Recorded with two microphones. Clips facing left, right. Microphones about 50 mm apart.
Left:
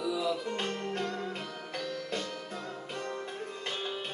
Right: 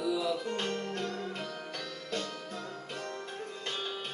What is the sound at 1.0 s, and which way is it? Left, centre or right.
Music, centre.